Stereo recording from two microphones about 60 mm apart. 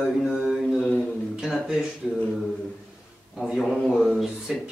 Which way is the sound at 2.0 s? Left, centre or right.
Centre.